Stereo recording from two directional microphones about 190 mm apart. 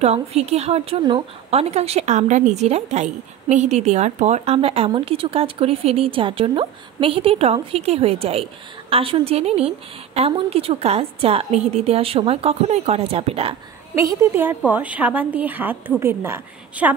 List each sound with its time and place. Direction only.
0.0 s a woman's voice: 35° right (ahead or behind)
13.9 s a woman's voice: 15° right (ahead or behind)